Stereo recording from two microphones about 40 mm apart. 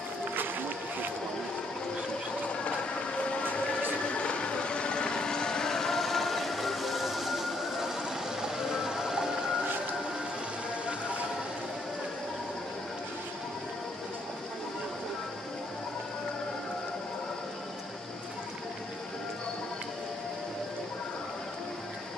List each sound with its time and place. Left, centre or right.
0.4 s run: right
4.1 s vehicle: left; by 9.6 s centre